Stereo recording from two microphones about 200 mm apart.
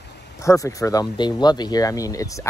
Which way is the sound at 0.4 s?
15° left (ahead or behind).